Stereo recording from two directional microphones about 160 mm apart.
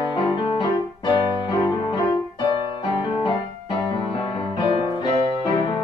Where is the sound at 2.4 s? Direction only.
30° left (ahead or behind).